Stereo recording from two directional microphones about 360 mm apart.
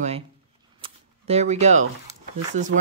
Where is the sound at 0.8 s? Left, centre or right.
Centre.